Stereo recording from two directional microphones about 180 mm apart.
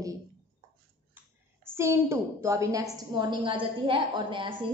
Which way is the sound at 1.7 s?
15° right (ahead or behind).